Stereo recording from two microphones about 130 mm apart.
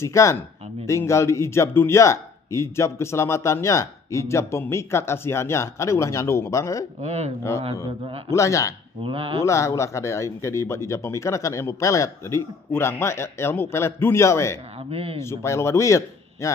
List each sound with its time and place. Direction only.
0.0 s a man's voice: 25° left (ahead or behind)
7.0 s speech: 60° right (ahead or behind)
8.3 s a man's voice: 25° left (ahead or behind)
9.0 s speech: 45° right (ahead or behind)
9.4 s a man's voice: 20° left (ahead or behind)
14.9 s speech: 50° right (ahead or behind)
15.1 s a man's voice: 20° left (ahead or behind)